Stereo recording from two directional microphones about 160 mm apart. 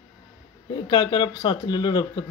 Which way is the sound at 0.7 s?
25° left (ahead or behind).